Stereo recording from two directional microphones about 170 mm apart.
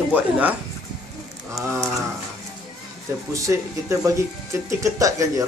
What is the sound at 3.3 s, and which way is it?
Speech, 20° right (ahead or behind).